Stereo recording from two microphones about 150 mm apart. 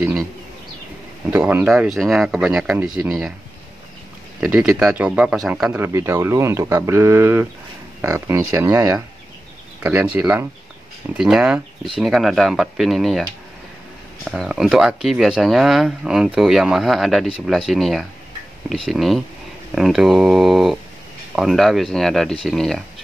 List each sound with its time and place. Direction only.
1.3 s speech: 10° right (ahead or behind)
4.6 s a man's voice: 5° right (ahead or behind); by 9.0 s 25° right (ahead or behind)
9.8 s a man's voice: 15° right (ahead or behind)